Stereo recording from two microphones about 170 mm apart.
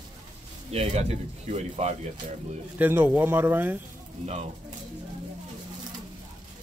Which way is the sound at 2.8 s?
10° right (ahead or behind).